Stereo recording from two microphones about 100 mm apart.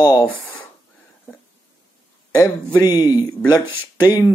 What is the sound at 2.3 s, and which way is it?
Speech, 35° left (ahead or behind).